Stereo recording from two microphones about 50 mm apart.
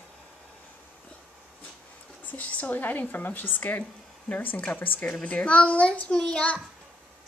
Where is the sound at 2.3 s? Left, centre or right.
Left.